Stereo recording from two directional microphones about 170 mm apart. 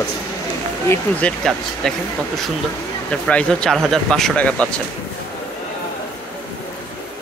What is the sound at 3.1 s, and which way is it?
Speech, 5° left (ahead or behind).